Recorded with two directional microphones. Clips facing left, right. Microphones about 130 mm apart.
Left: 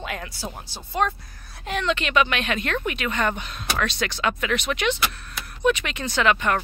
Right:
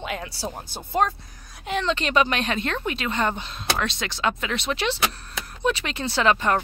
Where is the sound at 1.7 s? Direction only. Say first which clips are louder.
Even; 30° right (ahead or behind).